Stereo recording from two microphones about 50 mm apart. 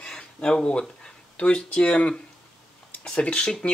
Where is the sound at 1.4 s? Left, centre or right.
Left.